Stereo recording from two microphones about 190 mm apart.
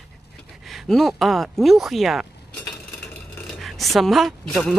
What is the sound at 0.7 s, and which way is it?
Speech, centre (ahead or behind).